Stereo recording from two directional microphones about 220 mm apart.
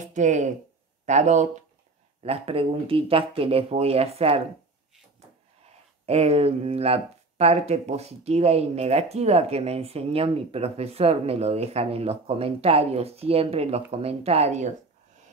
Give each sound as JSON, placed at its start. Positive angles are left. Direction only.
{"t": 0.0, "sound": "speech", "side_deg": -35}
{"t": 6.0, "sound": "speech", "side_deg": -30}